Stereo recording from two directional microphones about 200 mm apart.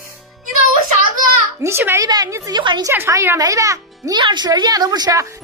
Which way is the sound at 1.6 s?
10° right (ahead or behind).